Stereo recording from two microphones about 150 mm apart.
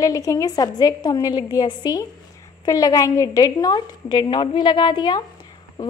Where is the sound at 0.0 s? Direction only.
20° left (ahead or behind).